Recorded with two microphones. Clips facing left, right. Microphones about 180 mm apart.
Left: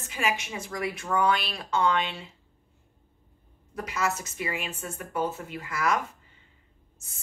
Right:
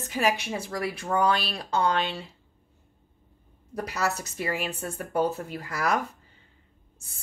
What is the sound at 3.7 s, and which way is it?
A woman's voice, 35° right (ahead or behind).